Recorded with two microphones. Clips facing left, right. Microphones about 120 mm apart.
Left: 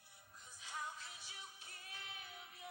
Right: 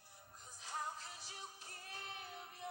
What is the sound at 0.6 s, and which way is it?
Music, 40° right (ahead or behind).